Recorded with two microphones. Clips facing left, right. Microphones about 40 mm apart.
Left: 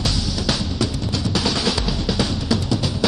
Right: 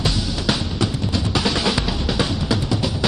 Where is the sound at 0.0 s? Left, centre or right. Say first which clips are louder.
Right 1 dB; centre.